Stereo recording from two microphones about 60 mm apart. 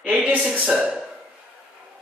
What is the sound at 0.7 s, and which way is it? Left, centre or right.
Speech, centre.